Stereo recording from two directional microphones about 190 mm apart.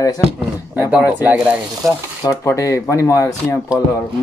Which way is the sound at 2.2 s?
15° left (ahead or behind).